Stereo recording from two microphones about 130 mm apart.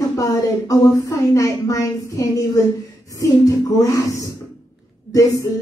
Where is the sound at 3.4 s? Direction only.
25° left (ahead or behind).